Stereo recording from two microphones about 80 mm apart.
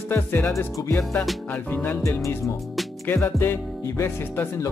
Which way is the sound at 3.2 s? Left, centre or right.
Left.